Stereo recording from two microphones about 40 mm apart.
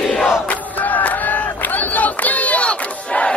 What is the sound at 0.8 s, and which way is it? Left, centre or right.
Crowd, left.